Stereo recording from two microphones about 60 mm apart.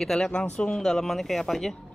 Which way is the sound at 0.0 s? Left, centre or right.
Centre.